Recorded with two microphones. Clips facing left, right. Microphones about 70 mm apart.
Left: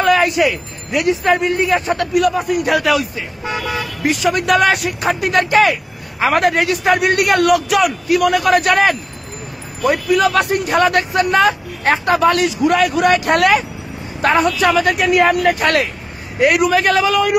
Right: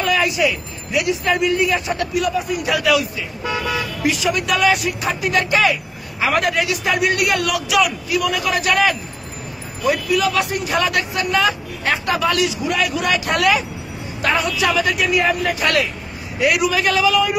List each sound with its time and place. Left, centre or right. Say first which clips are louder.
0.0 s a man's voice: left 4 dB; left